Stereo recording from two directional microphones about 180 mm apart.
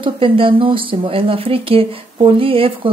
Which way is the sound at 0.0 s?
30° right (ahead or behind).